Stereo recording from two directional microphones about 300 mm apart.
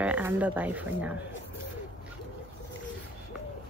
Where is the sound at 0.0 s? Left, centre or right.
Centre.